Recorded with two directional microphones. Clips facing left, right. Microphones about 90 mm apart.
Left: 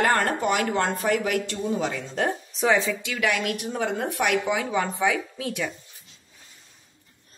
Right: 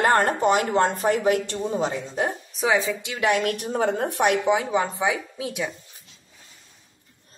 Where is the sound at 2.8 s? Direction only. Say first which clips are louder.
Right 2 dB; 25° right (ahead or behind).